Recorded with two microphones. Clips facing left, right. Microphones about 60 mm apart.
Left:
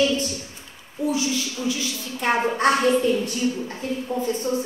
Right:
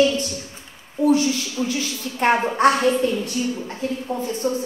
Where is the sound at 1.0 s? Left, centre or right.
Right.